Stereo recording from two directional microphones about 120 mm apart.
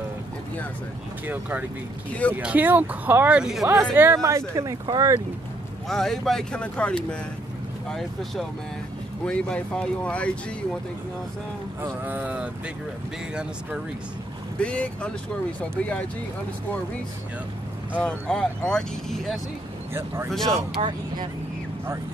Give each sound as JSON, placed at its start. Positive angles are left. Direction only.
{"t": 1.2, "sound": "speech", "side_deg": -15}
{"t": 2.0, "sound": "speech", "side_deg": 10}
{"t": 2.3, "sound": "speech", "side_deg": -15}
{"t": 3.8, "sound": "speech", "side_deg": -15}
{"t": 5.9, "sound": "speech", "side_deg": 5}
{"t": 11.8, "sound": "speech", "side_deg": -15}
{"t": 14.6, "sound": "speech", "side_deg": 10}
{"t": 17.9, "sound": "speech", "side_deg": 5}
{"t": 19.9, "sound": "speech", "side_deg": -20}
{"t": 20.2, "sound": "speech", "side_deg": 0}
{"t": 20.8, "sound": "speech", "side_deg": -55}